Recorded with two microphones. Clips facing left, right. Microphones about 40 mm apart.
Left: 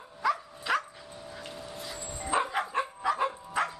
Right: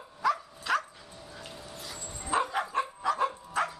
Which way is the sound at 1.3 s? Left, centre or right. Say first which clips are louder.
Left 2 dB; centre.